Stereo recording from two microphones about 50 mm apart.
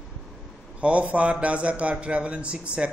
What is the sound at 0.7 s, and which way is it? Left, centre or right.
A man's voice, right.